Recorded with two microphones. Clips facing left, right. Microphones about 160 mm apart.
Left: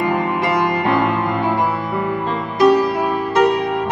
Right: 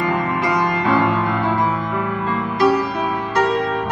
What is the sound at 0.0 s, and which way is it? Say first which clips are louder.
Music: left 2 dB; 25° left (ahead or behind).